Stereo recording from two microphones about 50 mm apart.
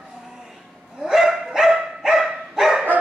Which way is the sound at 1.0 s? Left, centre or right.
Centre.